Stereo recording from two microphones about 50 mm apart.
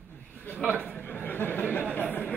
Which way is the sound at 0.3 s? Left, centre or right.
Left.